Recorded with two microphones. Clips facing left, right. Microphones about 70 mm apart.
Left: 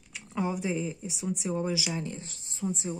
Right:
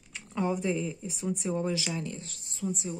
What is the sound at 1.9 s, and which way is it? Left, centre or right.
Speech, left.